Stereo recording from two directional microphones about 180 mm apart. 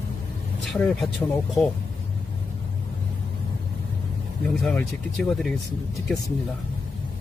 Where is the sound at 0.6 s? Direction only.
Centre (ahead or behind).